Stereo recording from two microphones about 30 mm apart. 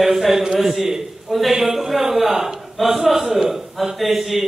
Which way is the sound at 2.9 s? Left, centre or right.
Centre.